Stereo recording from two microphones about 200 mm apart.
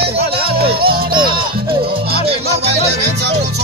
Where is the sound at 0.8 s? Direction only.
50° right (ahead or behind).